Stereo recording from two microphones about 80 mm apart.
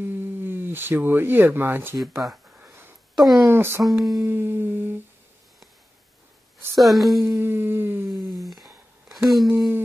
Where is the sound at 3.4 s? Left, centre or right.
Right.